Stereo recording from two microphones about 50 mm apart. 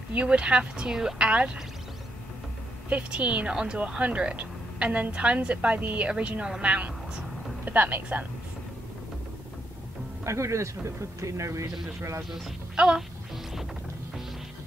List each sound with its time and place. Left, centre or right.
0.1 s a woman's voice: right
2.9 s a woman's voice: right
10.2 s speech: right
12.7 s music: centre